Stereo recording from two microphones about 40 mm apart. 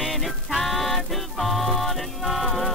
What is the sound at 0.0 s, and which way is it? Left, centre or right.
Music, centre.